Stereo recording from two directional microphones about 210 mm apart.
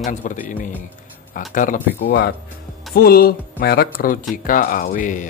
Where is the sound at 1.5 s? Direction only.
40° left (ahead or behind).